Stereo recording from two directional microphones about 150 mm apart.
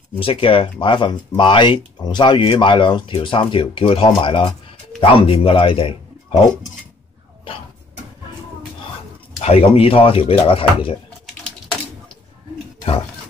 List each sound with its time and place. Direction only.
0.2 s speech: 40° left (ahead or behind)
9.4 s speech: 40° left (ahead or behind)